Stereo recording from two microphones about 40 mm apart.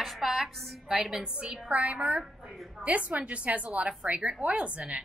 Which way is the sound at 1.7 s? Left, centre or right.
Right.